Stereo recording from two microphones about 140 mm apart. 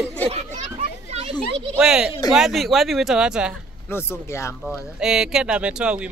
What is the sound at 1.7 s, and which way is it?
Speech, 5° right (ahead or behind).